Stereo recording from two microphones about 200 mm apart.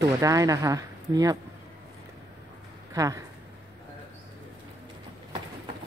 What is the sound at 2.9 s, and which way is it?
Speech, 15° right (ahead or behind).